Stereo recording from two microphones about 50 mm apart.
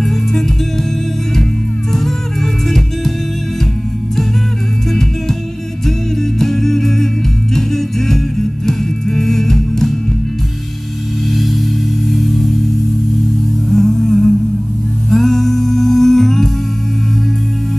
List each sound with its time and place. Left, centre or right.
0.0 s music: centre
6.4 s music: centre
11.3 s music: centre
13.7 s humming: centre
15.0 s music: centre